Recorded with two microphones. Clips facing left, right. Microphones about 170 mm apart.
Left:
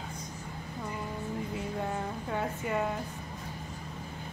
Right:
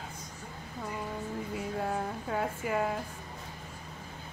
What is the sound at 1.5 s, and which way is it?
Speech, centre (ahead or behind).